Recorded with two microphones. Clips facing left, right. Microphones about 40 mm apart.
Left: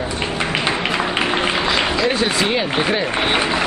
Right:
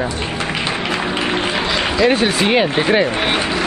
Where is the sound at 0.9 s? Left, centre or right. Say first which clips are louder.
Even; centre.